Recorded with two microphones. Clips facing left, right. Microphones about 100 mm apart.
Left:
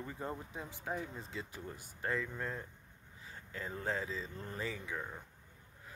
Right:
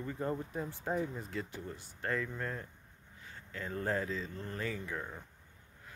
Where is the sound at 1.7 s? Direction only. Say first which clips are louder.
Right 1 dB; 10° left (ahead or behind).